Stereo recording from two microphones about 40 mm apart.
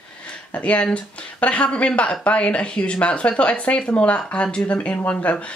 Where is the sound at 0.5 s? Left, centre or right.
Left.